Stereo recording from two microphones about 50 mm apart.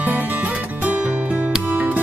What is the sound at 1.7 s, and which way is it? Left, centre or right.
Music, right.